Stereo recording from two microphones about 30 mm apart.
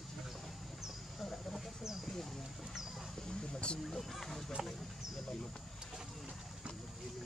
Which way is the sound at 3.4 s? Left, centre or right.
Left.